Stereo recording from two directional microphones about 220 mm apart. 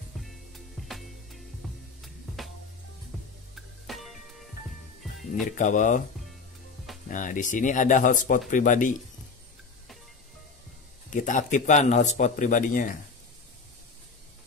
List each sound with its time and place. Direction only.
0.8 s music: centre (ahead or behind)
3.5 s music: centre (ahead or behind)
5.6 s speech: 35° left (ahead or behind)
7.1 s speech: 35° left (ahead or behind)
11.1 s speech: 35° left (ahead or behind)